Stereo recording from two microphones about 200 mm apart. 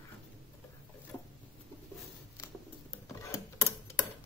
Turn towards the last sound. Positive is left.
turn(degrees=15)  # may be behind; listen again after turning